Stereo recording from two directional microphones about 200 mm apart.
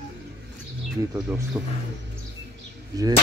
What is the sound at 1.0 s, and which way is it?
Speech, 15° right (ahead or behind).